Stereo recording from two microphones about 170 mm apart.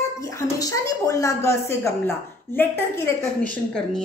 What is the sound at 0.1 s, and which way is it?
A woman's voice, 15° left (ahead or behind).